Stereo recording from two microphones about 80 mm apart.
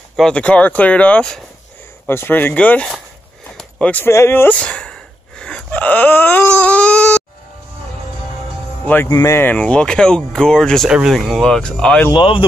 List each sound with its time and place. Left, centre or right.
0.1 s speech: centre
0.4 s speech: centre
2.0 s speech: left
2.5 s speech: centre
4.1 s speech: left
4.6 s a sound: centre
5.7 s baby cry: left
8.8 s speech: left
9.1 s speech: left
9.4 s speech: centre
10.9 s speech: centre
11.1 s speech: centre
12.1 s speech: left